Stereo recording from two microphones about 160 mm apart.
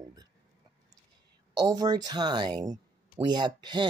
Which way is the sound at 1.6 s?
25° right (ahead or behind).